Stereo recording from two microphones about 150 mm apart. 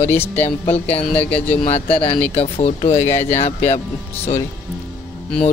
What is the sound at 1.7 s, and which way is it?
Speech, 40° left (ahead or behind).